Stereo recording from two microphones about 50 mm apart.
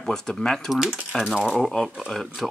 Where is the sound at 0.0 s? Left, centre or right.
Centre.